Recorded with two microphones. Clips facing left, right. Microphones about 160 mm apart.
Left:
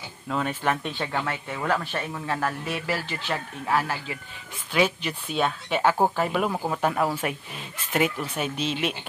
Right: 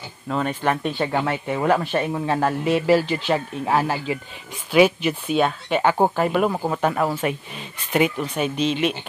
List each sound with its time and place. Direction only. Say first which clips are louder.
0.3 s speech: right 4 dB; centre (ahead or behind)
1.1 s speech: right 7 dB; 20° right (ahead or behind)
4.7 s speech: right 8 dB; 10° right (ahead or behind)